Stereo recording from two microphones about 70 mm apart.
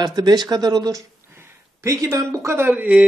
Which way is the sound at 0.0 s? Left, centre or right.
Right.